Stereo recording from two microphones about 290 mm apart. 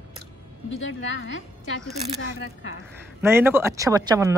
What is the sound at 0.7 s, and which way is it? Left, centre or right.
Speech, left.